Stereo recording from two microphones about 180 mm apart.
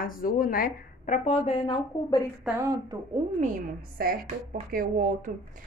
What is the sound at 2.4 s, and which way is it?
Speech, 15° right (ahead or behind).